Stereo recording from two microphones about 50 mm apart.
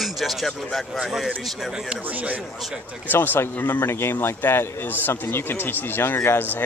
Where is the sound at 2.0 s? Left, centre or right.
Right.